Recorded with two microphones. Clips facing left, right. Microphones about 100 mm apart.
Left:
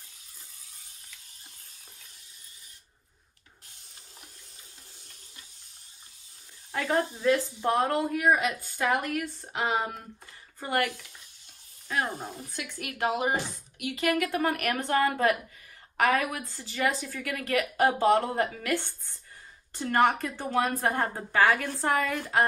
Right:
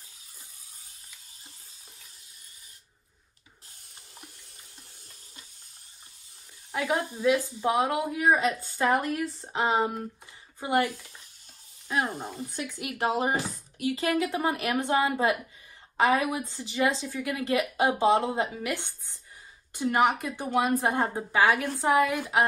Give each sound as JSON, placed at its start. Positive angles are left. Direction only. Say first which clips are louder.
{"t": 6.7, "sound": "a woman's voice", "louder": "left 1 dB", "side_deg": -15}
{"t": 8.4, "sound": "a woman's voice", "louder": "right 3 dB", "side_deg": -35}
{"t": 12.4, "sound": "a woman's voice", "louder": "right 3 dB", "side_deg": -20}